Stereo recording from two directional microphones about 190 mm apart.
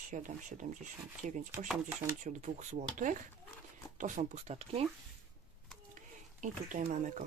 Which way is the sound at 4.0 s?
35° right (ahead or behind).